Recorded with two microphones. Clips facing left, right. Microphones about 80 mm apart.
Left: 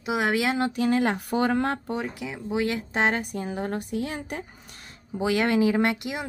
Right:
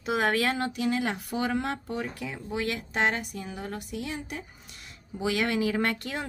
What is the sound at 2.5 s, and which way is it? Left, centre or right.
Speech, left.